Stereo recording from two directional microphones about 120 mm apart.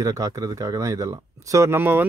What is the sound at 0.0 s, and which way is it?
A man's voice, 30° right (ahead or behind).